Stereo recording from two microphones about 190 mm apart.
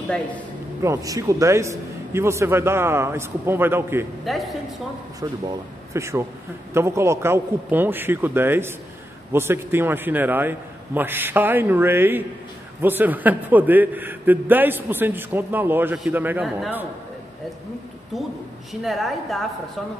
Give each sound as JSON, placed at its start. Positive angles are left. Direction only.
{"t": 0.8, "sound": "a man's voice", "side_deg": -15}
{"t": 4.2, "sound": "a man's voice", "side_deg": 0}
{"t": 5.2, "sound": "a man's voice", "side_deg": -20}
{"t": 18.7, "sound": "a woman's voice", "side_deg": 0}